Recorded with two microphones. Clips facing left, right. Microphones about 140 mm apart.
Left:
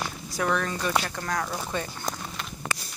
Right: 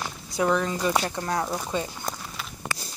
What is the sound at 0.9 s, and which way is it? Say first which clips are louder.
Speech: right 2 dB; 25° right (ahead or behind).